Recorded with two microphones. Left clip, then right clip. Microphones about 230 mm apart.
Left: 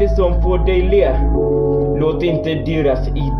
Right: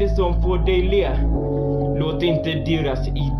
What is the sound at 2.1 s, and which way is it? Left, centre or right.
Speech, right.